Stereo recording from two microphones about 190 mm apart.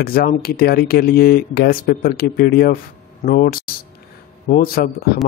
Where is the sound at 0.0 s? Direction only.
55° left (ahead or behind).